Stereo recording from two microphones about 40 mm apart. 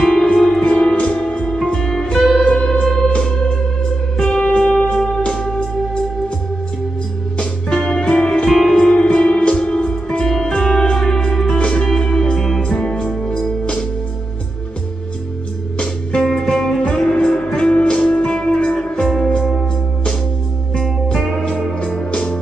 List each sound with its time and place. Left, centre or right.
0.0 s music: centre
0.9 s music: left; by 2.1 s centre
2.1 s music: centre
2.4 s music: centre
4.2 s music: centre
7.3 s music: left
8.5 s music: centre
8.7 s music: left
10.2 s music: centre
11.5 s music: left
15.8 s music: centre
17.6 s music: left
20.8 s music: centre
22.1 s music: left